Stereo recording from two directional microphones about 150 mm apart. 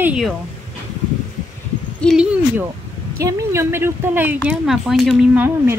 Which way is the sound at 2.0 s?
5° right (ahead or behind).